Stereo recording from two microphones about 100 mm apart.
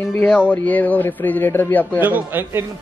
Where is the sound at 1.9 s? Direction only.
20° right (ahead or behind).